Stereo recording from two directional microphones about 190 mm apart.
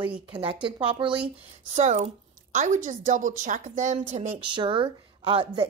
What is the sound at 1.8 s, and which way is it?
A woman's voice, 40° right (ahead or behind).